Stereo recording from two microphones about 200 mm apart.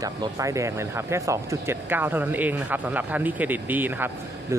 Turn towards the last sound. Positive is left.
turn(degrees=-10)  # may be behind; listen again after turning